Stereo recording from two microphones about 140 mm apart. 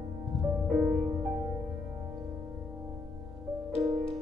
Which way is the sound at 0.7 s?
Centre (ahead or behind).